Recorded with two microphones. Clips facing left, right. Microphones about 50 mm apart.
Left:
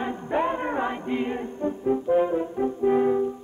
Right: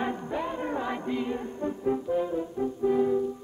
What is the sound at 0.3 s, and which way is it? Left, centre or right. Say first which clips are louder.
Music: left 6 dB; left.